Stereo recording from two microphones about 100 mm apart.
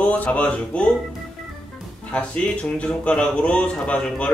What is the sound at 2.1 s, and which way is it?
Speech, 10° left (ahead or behind).